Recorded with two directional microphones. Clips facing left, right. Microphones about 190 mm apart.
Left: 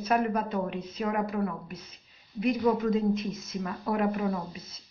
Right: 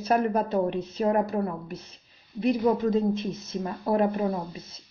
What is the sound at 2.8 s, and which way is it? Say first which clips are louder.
A woman's voice: right 2 dB; 30° right (ahead or behind).